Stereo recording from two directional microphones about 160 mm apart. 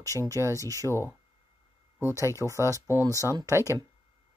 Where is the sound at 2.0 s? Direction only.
20° right (ahead or behind).